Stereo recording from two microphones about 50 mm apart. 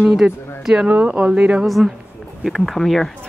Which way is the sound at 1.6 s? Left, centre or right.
Centre.